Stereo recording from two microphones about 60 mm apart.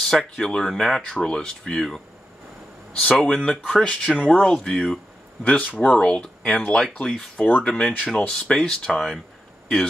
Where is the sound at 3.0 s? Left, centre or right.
Centre.